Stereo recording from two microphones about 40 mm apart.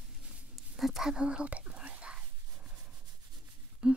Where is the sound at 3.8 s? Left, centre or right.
Right.